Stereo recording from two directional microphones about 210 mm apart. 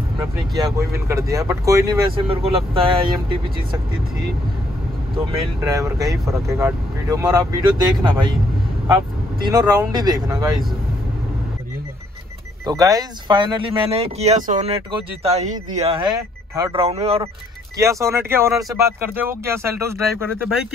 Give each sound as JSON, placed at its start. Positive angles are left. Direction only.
{"t": 0.7, "sound": "speech", "side_deg": -15}
{"t": 5.7, "sound": "speech", "side_deg": -15}
{"t": 9.4, "sound": "speech", "side_deg": -20}
{"t": 12.6, "sound": "speech", "side_deg": -15}
{"t": 16.7, "sound": "speech", "side_deg": -30}
{"t": 17.7, "sound": "speech", "side_deg": -15}